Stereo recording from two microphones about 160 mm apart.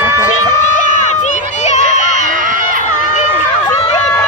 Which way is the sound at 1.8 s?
50° right (ahead or behind).